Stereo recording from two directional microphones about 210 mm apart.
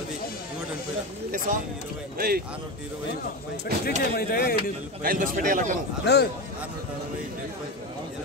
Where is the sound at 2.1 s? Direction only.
45° right (ahead or behind).